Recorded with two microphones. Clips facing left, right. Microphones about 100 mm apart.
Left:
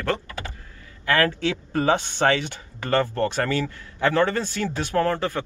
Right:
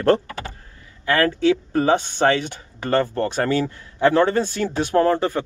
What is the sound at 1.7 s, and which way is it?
Speech, 25° right (ahead or behind).